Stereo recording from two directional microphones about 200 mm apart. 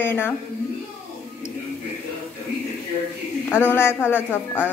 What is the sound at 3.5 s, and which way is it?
Speech, 10° left (ahead or behind).